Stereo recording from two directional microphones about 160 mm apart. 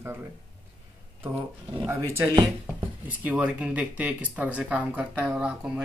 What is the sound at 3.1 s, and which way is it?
Speech, 10° right (ahead or behind).